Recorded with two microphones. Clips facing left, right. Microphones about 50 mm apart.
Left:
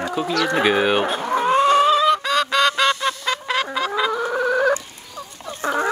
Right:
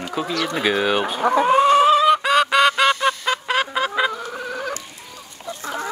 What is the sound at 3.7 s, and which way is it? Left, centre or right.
Fowl, right.